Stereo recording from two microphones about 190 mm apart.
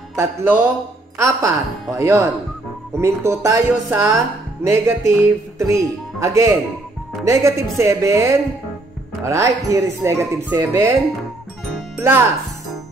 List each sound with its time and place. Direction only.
0.1 s speech: 15° right (ahead or behind)
12.0 s speech: 15° right (ahead or behind)